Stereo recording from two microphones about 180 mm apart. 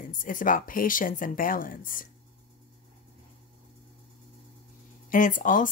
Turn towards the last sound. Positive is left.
turn(degrees=45)  # may be behind; listen again after turning